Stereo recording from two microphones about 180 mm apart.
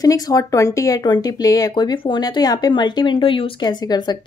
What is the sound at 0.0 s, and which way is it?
Speech, 20° left (ahead or behind).